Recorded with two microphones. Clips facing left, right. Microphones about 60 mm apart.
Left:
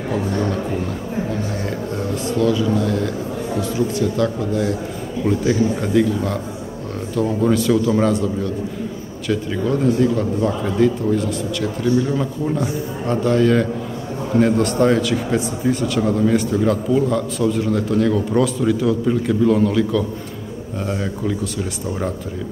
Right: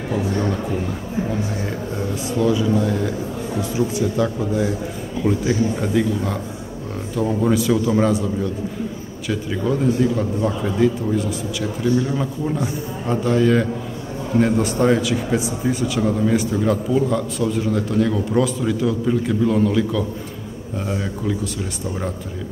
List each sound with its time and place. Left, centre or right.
2.3 s speech: centre
4.2 s a man's voice: centre